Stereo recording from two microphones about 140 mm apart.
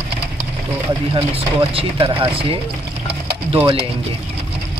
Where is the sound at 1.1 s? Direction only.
40° right (ahead or behind).